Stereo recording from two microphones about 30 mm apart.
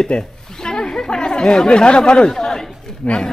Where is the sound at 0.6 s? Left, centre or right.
Left.